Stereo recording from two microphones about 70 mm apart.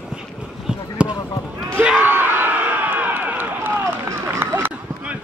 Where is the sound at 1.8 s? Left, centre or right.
Right.